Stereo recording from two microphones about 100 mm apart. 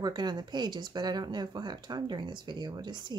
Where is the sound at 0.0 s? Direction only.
45° right (ahead or behind).